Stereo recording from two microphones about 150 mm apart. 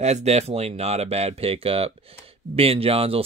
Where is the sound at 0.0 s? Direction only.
45° right (ahead or behind).